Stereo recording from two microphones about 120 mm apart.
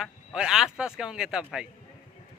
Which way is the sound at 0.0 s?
5° right (ahead or behind).